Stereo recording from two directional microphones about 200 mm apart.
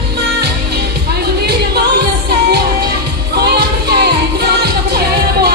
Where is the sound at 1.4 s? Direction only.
55° right (ahead or behind).